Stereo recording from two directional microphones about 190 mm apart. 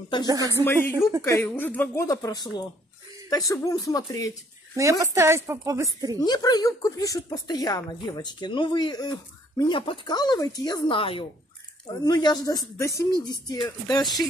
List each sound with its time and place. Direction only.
0.3 s a woman's voice: 15° right (ahead or behind)
0.7 s speech: 10° left (ahead or behind)
5.0 s a woman's voice: 15° right (ahead or behind)
6.1 s speech: 20° left (ahead or behind)